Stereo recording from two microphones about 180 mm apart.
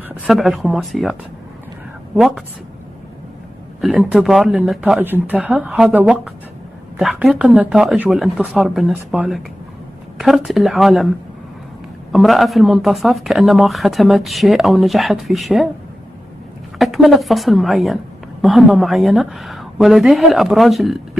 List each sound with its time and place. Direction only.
0.2 s speech: centre (ahead or behind)
2.1 s speech: centre (ahead or behind)
3.8 s a woman's voice: 5° right (ahead or behind)
12.1 s speech: centre (ahead or behind)
16.7 s speech: centre (ahead or behind)